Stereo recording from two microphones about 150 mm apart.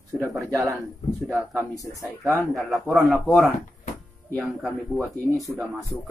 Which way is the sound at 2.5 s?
Centre (ahead or behind).